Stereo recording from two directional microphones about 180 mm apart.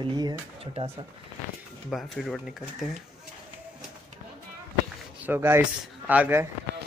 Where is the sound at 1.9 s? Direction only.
Centre (ahead or behind).